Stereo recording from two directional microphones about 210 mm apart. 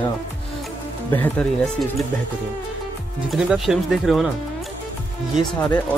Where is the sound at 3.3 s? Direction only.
5° right (ahead or behind).